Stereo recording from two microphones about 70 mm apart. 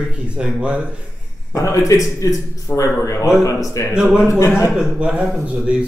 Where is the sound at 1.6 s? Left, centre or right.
Left.